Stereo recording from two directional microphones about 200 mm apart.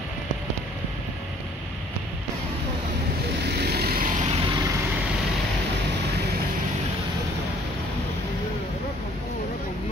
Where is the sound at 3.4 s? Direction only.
55° right (ahead or behind).